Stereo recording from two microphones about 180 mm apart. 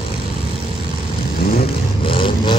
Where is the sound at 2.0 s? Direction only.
30° left (ahead or behind).